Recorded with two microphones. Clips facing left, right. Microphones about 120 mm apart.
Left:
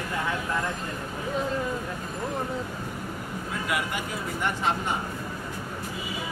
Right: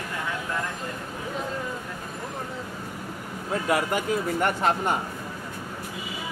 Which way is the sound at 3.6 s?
40° right (ahead or behind).